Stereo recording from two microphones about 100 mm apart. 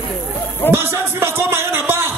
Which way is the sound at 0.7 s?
25° right (ahead or behind).